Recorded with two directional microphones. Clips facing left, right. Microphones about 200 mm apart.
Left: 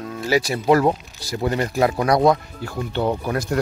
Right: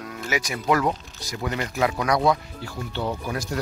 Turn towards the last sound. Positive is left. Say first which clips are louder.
# left 6 dB
turn(degrees=55)  # may be behind; listen again after turning